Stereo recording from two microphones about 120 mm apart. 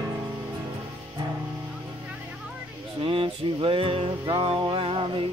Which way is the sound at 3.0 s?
50° right (ahead or behind).